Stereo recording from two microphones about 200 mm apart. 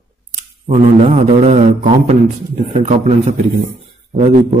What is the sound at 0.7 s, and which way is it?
A man's voice, 30° right (ahead or behind).